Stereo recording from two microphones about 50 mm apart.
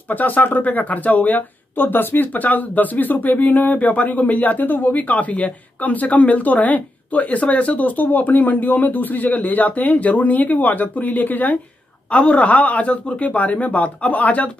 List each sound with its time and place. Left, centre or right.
0.1 s speech: left
12.1 s a man's voice: left